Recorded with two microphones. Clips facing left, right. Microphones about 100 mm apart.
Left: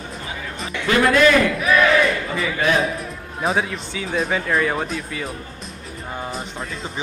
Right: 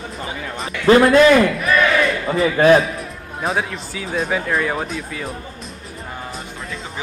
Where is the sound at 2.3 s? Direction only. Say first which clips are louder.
Right 12 dB; 35° right (ahead or behind).